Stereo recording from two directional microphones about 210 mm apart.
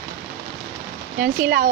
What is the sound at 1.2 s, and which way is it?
Speech, 50° right (ahead or behind).